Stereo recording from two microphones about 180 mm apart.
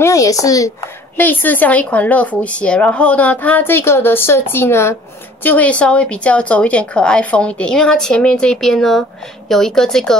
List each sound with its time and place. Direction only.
0.0 s speech: 20° left (ahead or behind); by 10.1 s 5° left (ahead or behind)